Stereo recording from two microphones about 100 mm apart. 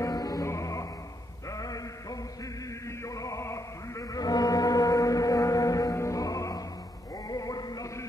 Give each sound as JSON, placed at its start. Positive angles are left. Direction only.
{"t": 0.0, "sound": "music", "side_deg": 40}
{"t": 3.2, "sound": "music", "side_deg": 30}